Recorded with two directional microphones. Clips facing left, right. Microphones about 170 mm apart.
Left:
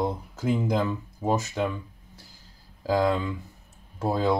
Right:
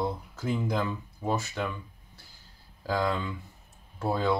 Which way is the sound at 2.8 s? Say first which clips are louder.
Left 5 dB; 20° left (ahead or behind).